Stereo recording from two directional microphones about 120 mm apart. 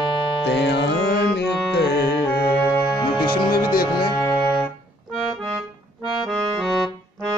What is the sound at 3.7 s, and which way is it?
Music, 40° left (ahead or behind).